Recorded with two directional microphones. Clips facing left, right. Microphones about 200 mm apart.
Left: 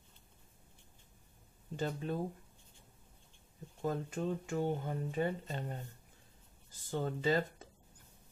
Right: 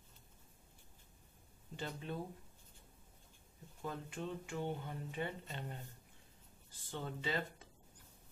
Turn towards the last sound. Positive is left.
turn(degrees=45)  # may be behind; listen again after turning